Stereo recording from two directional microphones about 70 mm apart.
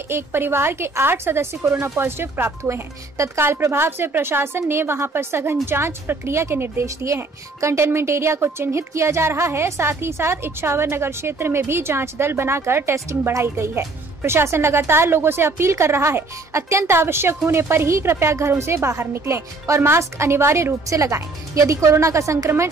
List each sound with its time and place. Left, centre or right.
0.1 s a woman's voice: right